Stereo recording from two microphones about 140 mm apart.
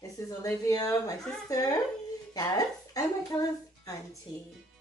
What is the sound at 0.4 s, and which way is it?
Speech, 25° left (ahead or behind).